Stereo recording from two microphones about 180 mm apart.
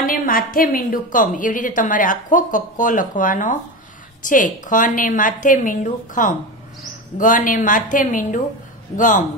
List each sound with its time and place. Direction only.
0.0 s a woman's voice: 50° left (ahead or behind)